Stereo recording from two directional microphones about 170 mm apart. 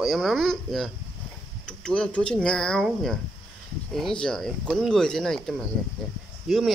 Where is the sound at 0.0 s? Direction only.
Centre (ahead or behind).